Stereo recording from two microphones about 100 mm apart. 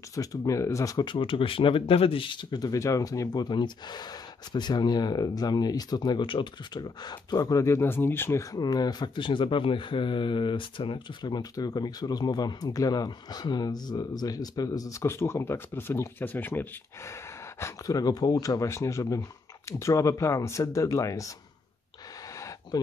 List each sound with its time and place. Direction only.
0.1 s speech: 35° left (ahead or behind)
1.0 s speech: 60° left (ahead or behind); by 17.1 s 20° left (ahead or behind)
17.6 s speech: 30° left (ahead or behind)